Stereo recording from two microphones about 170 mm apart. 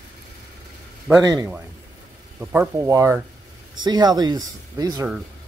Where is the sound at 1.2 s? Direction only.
20° right (ahead or behind).